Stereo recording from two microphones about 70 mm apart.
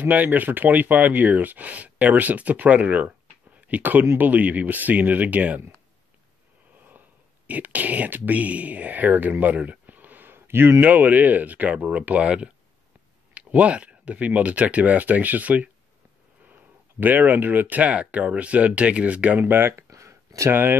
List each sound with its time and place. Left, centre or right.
0.0 s speech: right
7.4 s speech: right
17.0 s speech: right
19.4 s speech: right
19.9 s a sound: right